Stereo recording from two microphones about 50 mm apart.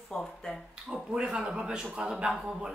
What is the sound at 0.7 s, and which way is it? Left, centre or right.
Speech, centre.